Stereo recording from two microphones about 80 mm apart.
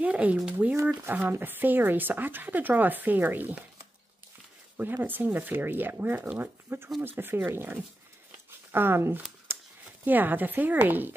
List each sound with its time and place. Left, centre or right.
0.0 s speech: centre
1.0 s speech: right
4.7 s speech: right
9.5 s a sound: right
10.0 s speech: right